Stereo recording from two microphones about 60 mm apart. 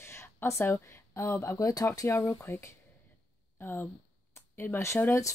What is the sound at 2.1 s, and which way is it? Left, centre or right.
A woman's voice, left.